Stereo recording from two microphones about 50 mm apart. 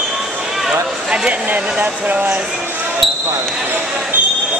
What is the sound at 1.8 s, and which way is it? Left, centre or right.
Speech, right.